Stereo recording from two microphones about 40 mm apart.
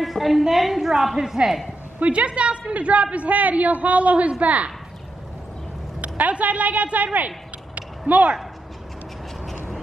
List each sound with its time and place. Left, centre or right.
0.0 s a woman's voice: centre
2.0 s a woman's voice: right
5.9 s a man's voice: right